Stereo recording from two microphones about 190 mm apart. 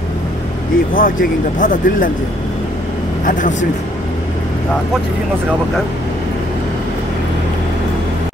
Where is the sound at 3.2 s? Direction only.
45° left (ahead or behind).